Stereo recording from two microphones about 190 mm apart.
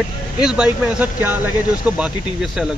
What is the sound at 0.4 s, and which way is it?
Speech, 5° right (ahead or behind).